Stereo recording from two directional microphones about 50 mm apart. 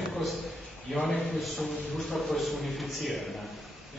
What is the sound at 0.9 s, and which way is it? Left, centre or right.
Speech, centre.